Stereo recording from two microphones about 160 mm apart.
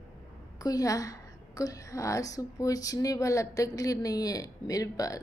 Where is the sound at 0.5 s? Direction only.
20° left (ahead or behind).